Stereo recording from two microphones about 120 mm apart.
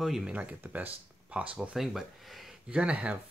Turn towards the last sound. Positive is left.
turn(degrees=-10)  # may be behind; listen again after turning